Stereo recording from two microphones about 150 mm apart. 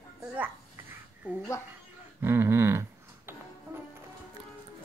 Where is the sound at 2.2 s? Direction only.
15° right (ahead or behind).